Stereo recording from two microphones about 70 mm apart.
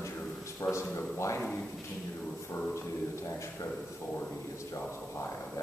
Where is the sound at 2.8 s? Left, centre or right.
Left.